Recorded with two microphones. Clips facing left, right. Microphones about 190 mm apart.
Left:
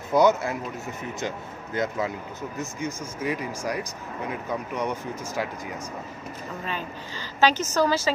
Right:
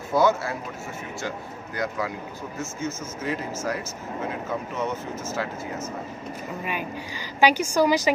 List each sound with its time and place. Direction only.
0.1 s speech: 20° left (ahead or behind)
1.8 s speech: 25° left (ahead or behind)
6.6 s a woman's voice: 15° right (ahead or behind)